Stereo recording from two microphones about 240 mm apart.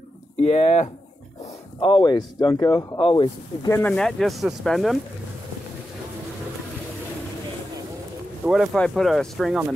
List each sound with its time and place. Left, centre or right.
0.4 s speech: left; by 4.9 s centre
8.5 s speech: centre